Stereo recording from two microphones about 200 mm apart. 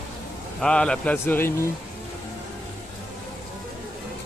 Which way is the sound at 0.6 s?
5° left (ahead or behind).